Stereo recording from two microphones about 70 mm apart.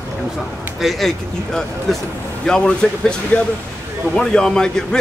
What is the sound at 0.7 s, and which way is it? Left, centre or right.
A man's voice, centre.